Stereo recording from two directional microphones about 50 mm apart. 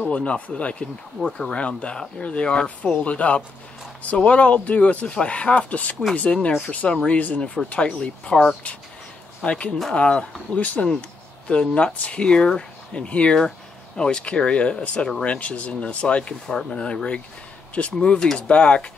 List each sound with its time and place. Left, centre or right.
0.1 s speech: left
9.4 s speech: left